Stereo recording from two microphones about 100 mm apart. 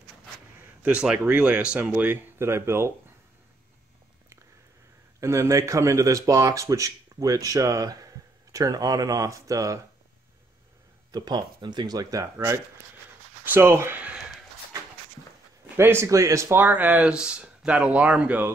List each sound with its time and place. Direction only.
0.8 s speech: 10° right (ahead or behind); by 2.9 s 25° right (ahead or behind)
5.2 s speech: 30° right (ahead or behind)
11.1 s speech: 45° right (ahead or behind); by 14.2 s 15° right (ahead or behind)
15.7 s speech: 25° right (ahead or behind)